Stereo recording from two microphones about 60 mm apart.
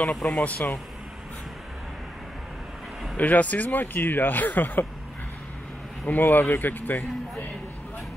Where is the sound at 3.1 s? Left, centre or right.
Left.